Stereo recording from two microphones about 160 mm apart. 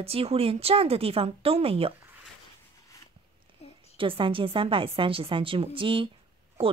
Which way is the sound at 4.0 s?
35° right (ahead or behind).